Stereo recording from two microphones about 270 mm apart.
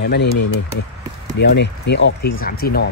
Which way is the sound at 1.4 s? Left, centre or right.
Left.